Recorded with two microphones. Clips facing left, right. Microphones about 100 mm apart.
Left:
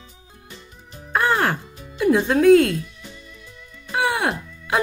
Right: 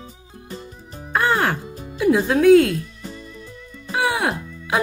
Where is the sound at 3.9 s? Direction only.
Centre (ahead or behind).